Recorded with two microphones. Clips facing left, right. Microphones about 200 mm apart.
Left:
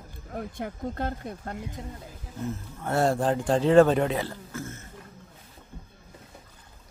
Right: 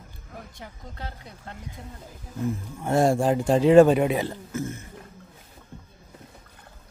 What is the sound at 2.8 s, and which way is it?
A man's voice, 15° right (ahead or behind).